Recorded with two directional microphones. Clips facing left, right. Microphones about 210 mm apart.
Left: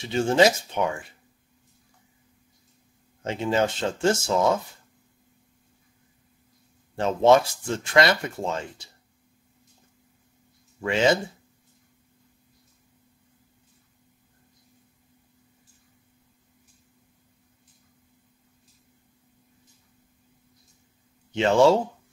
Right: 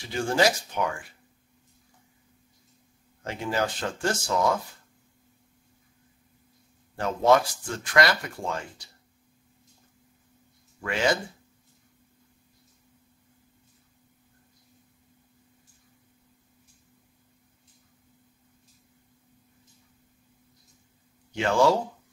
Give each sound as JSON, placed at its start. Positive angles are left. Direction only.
{"t": 0.0, "sound": "speech", "side_deg": 25}
{"t": 3.3, "sound": "speech", "side_deg": 25}
{"t": 7.0, "sound": "speech", "side_deg": 25}
{"t": 10.8, "sound": "speech", "side_deg": 25}
{"t": 21.3, "sound": "speech", "side_deg": 25}